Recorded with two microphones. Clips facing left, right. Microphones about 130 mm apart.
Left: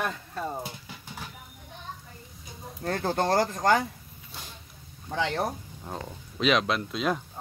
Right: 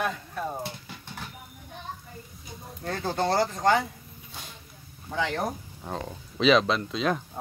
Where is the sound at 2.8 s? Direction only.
50° left (ahead or behind).